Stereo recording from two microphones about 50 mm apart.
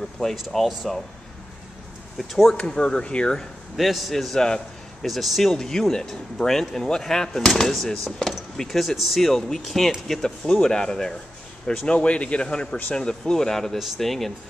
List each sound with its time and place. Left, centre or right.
0.5 s speech: centre
2.1 s speech: centre
2.5 s speech: centre
3.3 s speech: centre